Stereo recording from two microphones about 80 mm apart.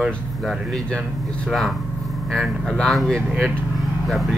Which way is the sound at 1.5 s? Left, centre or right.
Centre.